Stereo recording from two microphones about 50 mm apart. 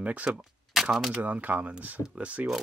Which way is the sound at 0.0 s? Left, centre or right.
Right.